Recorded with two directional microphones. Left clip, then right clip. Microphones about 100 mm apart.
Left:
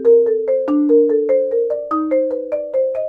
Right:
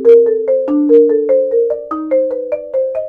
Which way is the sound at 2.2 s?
30° left (ahead or behind).